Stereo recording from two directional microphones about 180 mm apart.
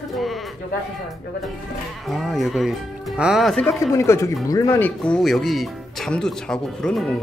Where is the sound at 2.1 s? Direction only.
Centre (ahead or behind).